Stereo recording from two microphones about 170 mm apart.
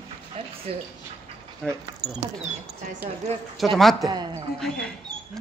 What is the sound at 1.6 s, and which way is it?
Speech, 5° left (ahead or behind).